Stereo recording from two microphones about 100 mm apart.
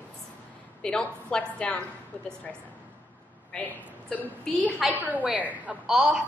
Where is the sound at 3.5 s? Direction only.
10° left (ahead or behind).